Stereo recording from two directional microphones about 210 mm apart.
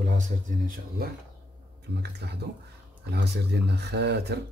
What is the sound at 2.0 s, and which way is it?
Speech, 50° right (ahead or behind).